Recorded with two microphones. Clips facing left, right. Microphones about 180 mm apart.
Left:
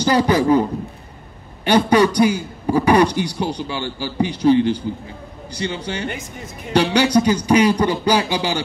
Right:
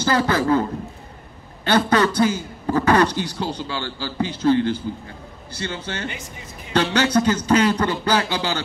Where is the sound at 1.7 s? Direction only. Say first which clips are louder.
Left 4 dB; 15° left (ahead or behind).